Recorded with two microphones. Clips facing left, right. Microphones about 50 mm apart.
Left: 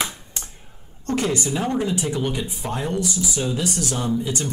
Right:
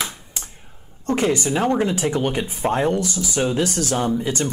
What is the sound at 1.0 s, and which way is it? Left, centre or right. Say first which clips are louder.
Speech: right 3 dB; right.